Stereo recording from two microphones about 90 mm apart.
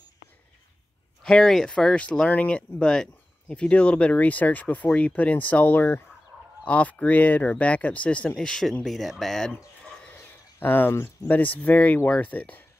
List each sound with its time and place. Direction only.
1.2 s speech: 5° left (ahead or behind)
9.8 s a sound: 10° left (ahead or behind)
10.6 s speech: 20° left (ahead or behind)